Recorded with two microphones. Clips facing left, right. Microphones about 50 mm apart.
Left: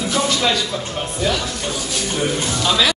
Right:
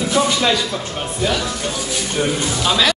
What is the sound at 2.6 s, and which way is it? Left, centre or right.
Speech, centre.